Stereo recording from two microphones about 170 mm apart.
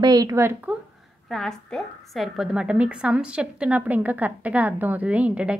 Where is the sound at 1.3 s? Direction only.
Centre (ahead or behind).